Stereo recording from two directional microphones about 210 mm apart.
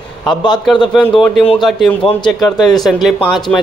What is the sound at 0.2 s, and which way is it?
Speech, 20° left (ahead or behind).